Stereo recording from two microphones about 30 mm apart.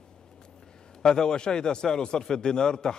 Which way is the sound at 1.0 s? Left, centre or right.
Left.